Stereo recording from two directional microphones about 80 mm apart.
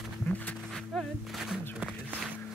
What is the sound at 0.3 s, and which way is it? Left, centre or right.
Music, left.